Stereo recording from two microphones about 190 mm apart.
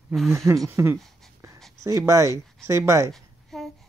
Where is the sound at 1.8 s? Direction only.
15° right (ahead or behind).